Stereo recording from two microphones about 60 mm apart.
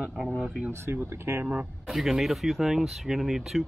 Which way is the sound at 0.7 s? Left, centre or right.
Right.